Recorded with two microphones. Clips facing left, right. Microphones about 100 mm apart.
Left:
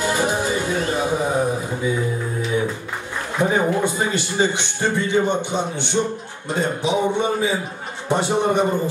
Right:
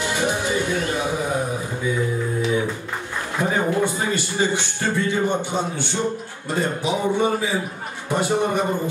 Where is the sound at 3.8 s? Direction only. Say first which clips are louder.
Left 1 dB; 20° left (ahead or behind).